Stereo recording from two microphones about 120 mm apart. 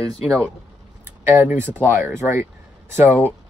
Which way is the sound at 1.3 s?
20° right (ahead or behind).